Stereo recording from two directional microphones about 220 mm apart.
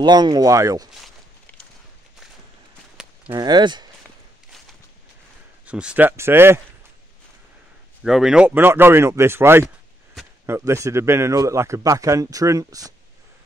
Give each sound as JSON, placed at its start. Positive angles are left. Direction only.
{"t": 0.0, "sound": "speech", "side_deg": -20}
{"t": 3.3, "sound": "speech", "side_deg": -20}
{"t": 5.7, "sound": "speech", "side_deg": -5}
{"t": 8.0, "sound": "speech", "side_deg": 0}